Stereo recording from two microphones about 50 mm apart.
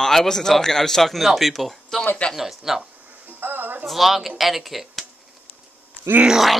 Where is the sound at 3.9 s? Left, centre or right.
Centre.